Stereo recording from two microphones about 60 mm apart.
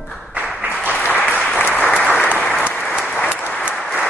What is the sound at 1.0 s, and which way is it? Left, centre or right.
Applause, left.